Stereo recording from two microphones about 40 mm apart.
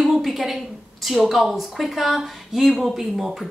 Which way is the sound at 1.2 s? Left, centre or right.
Centre.